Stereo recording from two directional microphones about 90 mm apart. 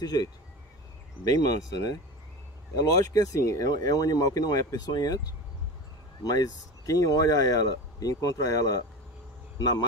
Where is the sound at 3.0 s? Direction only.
40° left (ahead or behind).